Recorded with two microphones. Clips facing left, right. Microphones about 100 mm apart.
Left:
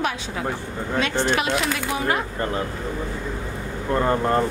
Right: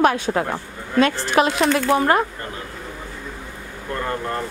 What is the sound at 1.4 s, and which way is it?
Speech, 40° right (ahead or behind).